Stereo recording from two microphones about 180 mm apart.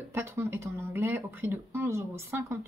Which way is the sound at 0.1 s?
15° right (ahead or behind).